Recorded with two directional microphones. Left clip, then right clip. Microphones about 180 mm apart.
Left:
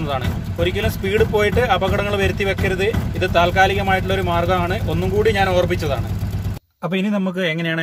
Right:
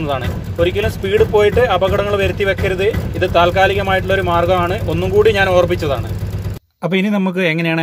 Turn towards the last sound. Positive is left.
turn(degrees=-25)  # may be behind; listen again after turning